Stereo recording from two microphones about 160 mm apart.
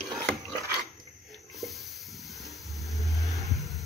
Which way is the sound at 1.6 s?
Centre (ahead or behind).